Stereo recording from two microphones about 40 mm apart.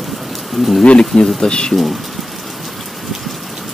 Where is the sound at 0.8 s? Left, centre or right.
Left.